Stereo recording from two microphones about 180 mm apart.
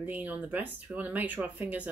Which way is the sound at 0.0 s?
10° right (ahead or behind).